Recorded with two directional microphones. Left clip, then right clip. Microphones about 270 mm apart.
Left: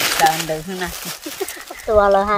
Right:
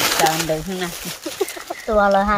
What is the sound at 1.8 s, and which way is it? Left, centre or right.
Speech, left.